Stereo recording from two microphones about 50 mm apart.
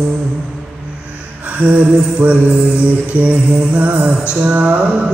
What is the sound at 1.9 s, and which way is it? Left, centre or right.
Mantra, right.